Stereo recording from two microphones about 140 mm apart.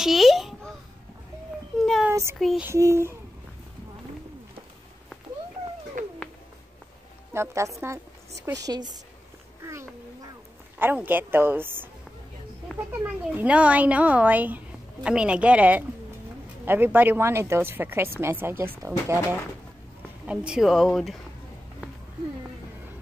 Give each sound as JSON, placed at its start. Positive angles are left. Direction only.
{"t": 0.0, "sound": "a child's voice", "side_deg": 0}
{"t": 1.8, "sound": "a sound", "side_deg": 0}
{"t": 2.0, "sound": "a sound", "side_deg": -20}
{"t": 2.3, "sound": "speech", "side_deg": 0}
{"t": 2.6, "sound": "a child's voice", "side_deg": -20}
{"t": 6.0, "sound": "cat", "side_deg": -65}
{"t": 7.3, "sound": "a woman's voice", "side_deg": -20}
{"t": 9.6, "sound": "cat", "side_deg": -20}
{"t": 10.8, "sound": "a woman's voice", "side_deg": -15}
{"t": 12.9, "sound": "a woman's voice", "side_deg": -10}
{"t": 20.2, "sound": "speech", "side_deg": -5}